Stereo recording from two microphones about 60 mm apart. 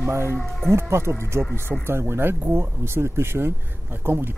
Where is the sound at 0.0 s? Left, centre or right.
Right.